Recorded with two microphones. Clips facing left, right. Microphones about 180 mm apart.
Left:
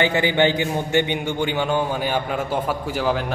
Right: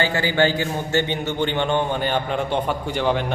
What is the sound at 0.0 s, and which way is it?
A man's voice, 20° left (ahead or behind).